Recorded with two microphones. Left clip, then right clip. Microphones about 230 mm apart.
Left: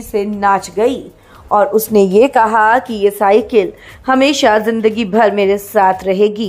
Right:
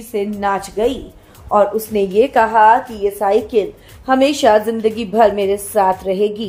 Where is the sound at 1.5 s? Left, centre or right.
Left.